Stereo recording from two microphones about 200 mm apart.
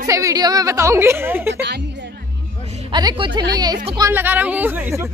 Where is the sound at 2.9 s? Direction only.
20° right (ahead or behind).